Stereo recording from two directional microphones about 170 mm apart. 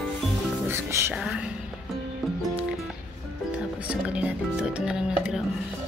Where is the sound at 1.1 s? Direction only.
5° right (ahead or behind).